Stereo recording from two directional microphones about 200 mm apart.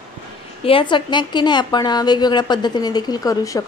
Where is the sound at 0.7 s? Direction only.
25° left (ahead or behind).